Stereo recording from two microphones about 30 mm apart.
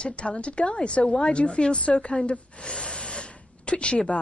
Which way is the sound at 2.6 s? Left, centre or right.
Left.